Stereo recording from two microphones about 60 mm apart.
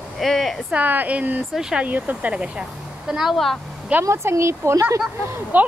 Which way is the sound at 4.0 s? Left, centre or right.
Right.